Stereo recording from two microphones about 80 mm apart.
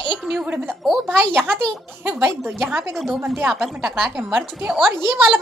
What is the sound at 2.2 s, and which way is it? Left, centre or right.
Speech, right.